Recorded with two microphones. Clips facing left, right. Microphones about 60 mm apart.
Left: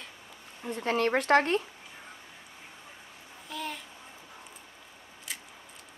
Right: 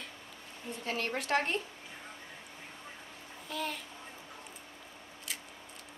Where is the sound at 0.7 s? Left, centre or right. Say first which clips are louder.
Left 9 dB; left.